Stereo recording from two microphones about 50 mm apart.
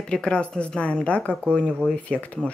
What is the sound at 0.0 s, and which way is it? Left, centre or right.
Speech, centre.